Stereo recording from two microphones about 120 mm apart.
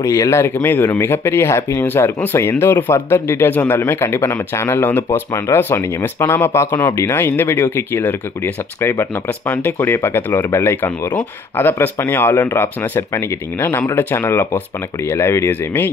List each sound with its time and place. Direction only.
0.0 s speech: 25° left (ahead or behind)
9.5 s speech: 20° left (ahead or behind)